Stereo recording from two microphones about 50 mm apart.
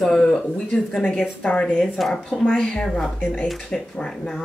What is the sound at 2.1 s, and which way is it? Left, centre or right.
Speech, centre.